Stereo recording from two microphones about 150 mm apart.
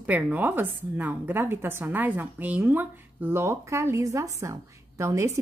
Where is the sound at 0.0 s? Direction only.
10° right (ahead or behind).